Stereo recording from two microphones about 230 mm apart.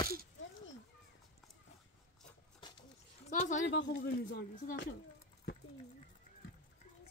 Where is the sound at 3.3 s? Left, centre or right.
Left.